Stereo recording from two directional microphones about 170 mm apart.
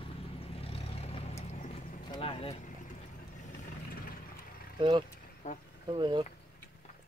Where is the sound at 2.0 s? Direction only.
30° left (ahead or behind).